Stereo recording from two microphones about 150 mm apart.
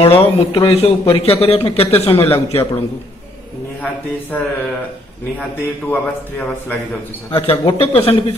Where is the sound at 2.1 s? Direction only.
15° left (ahead or behind).